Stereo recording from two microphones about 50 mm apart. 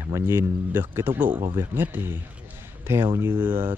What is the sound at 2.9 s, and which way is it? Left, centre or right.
Speech, right.